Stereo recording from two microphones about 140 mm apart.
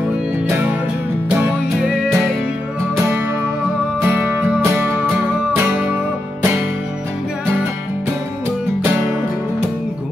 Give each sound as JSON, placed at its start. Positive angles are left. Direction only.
{"t": 0.5, "sound": "music", "side_deg": -15}
{"t": 4.0, "sound": "music", "side_deg": -15}